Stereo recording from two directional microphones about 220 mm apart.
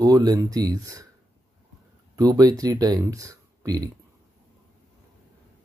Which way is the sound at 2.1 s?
15° right (ahead or behind).